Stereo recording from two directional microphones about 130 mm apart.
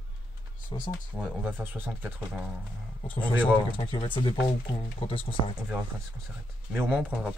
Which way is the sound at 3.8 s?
40° left (ahead or behind).